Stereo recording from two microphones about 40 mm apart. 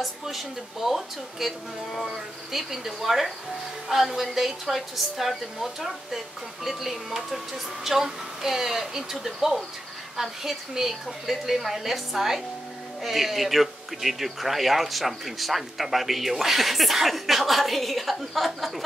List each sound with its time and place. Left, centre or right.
0.0 s a woman's voice: centre